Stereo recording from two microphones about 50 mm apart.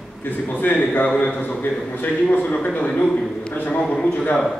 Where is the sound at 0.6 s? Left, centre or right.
Left.